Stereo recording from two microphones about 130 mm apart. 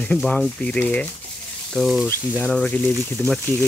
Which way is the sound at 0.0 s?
5° left (ahead or behind).